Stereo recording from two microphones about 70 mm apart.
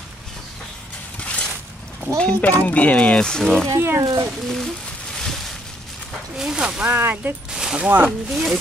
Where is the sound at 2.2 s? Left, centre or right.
Centre.